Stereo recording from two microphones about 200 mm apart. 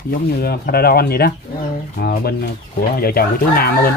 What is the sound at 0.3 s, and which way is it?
Speech, 50° left (ahead or behind).